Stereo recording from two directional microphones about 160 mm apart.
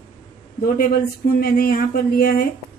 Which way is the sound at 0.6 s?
65° left (ahead or behind).